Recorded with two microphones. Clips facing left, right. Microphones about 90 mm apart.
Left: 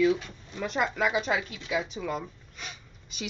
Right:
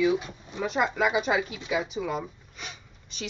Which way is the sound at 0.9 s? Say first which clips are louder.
Right 2 dB; 5° right (ahead or behind).